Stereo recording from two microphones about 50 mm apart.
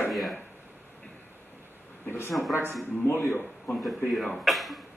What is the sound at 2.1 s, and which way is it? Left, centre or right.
Speech, left.